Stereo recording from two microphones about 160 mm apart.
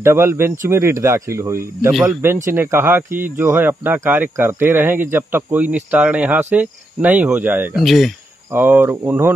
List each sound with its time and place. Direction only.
0.0 s speech: 15° right (ahead or behind)
7.8 s speech: centre (ahead or behind)
8.5 s speech: 15° right (ahead or behind)